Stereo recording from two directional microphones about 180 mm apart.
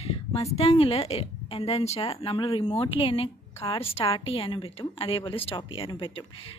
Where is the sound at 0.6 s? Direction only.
35° left (ahead or behind).